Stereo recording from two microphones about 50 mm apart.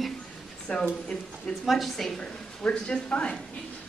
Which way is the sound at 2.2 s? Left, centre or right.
Centre.